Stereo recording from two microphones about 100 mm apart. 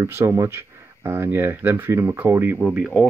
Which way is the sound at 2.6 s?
10° right (ahead or behind).